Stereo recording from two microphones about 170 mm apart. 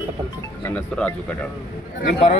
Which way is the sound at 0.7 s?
10° left (ahead or behind).